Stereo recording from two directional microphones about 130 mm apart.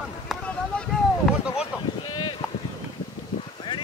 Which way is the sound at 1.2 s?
Centre (ahead or behind).